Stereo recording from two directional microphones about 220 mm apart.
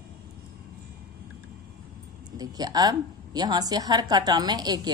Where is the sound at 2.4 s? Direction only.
15° right (ahead or behind).